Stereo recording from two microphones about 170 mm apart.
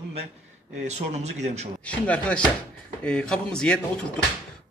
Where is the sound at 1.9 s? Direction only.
5° left (ahead or behind).